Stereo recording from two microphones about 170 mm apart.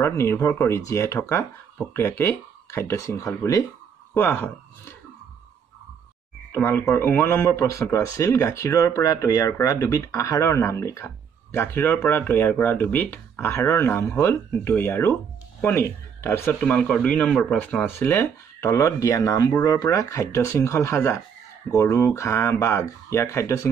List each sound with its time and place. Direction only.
0.0 s speech: 15° left (ahead or behind)
6.5 s speech: 15° left (ahead or behind)